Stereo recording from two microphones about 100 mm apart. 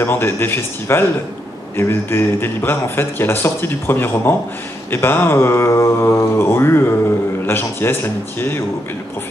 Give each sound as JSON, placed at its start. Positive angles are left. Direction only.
{"t": 0.0, "sound": "speech", "side_deg": 25}